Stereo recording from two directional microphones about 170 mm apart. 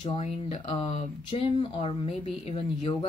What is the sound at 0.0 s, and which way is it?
A woman's voice, 35° left (ahead or behind).